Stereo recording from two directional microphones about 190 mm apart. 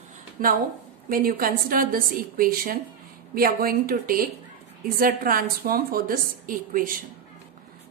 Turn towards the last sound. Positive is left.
turn(degrees=-45)  # may be behind; listen again after turning